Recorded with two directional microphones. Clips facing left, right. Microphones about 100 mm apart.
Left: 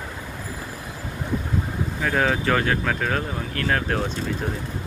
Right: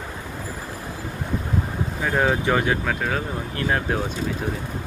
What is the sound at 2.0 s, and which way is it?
Speech, 15° right (ahead or behind).